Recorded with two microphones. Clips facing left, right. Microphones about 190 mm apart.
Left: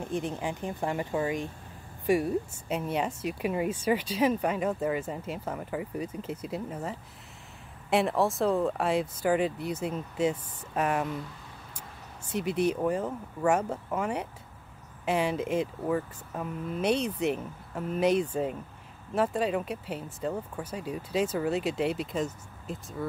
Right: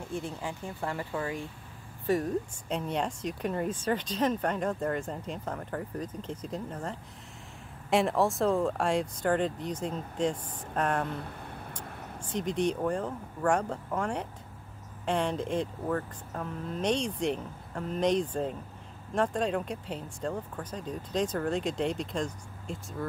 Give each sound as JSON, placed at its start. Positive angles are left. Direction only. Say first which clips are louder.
{"t": 0.0, "sound": "speech", "louder": "left 4 dB", "side_deg": 20}
{"t": 11.1, "sound": "vehicle", "louder": "left 1 dB", "side_deg": -60}
{"t": 12.3, "sound": "speech", "louder": "left 2 dB", "side_deg": 10}